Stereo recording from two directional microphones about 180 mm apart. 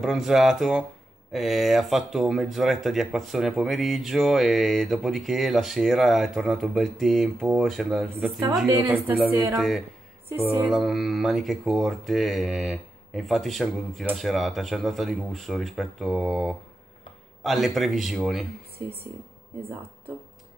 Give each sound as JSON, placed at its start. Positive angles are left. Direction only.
{"t": 0.0, "sound": "speech", "side_deg": 0}
{"t": 8.6, "sound": "speech", "side_deg": -20}
{"t": 9.6, "sound": "speech", "side_deg": 0}